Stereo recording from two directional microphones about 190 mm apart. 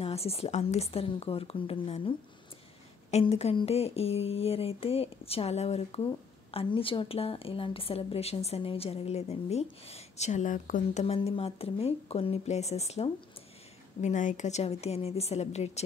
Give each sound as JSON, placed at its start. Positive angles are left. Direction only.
{"t": 0.0, "sound": "speech", "side_deg": 30}